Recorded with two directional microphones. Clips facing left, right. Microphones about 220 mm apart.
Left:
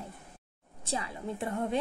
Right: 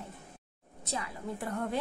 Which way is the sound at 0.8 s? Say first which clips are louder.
Left 2 dB; 30° left (ahead or behind).